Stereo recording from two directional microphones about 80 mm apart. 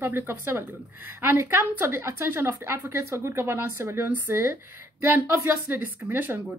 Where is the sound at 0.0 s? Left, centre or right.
Right.